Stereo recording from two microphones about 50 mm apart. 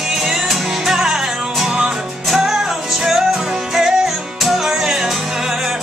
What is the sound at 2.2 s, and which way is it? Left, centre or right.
Music, centre.